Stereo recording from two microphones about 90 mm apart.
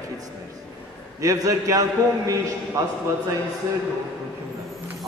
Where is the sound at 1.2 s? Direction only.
40° right (ahead or behind).